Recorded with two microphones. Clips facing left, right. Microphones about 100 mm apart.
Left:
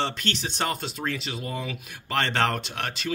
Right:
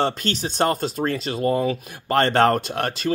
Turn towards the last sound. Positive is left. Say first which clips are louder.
# right 7 dB
turn(degrees=-40)  # may be behind; listen again after turning